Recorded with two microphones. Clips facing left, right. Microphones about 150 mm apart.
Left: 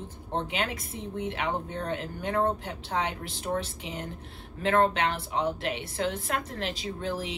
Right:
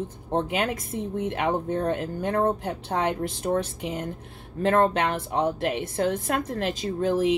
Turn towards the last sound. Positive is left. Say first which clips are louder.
# right 8 dB
turn(degrees=-45)  # may be behind; listen again after turning